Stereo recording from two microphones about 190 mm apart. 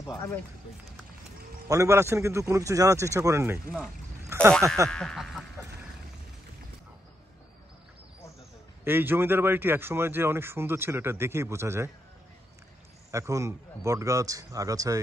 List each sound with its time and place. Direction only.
0.0 s speech: 15° left (ahead or behind)
1.7 s speech: 15° right (ahead or behind)
4.8 s speech: centre (ahead or behind)
8.8 s speech: 10° right (ahead or behind)
13.1 s speech: 15° right (ahead or behind)